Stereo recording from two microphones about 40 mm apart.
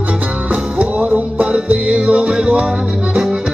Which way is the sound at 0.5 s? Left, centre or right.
Right.